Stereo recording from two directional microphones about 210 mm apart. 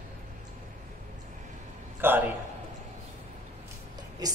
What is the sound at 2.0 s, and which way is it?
Speech, 10° right (ahead or behind).